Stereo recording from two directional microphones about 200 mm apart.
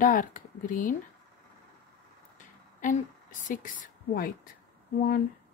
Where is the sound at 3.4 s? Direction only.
40° left (ahead or behind).